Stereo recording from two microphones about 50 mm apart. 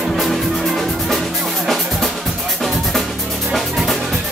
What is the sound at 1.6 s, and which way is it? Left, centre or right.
Music, centre.